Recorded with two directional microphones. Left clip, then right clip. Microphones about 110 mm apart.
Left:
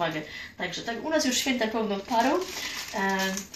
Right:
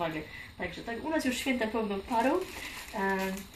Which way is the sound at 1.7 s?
10° right (ahead or behind).